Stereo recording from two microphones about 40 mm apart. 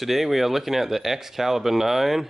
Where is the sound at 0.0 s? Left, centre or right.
Centre.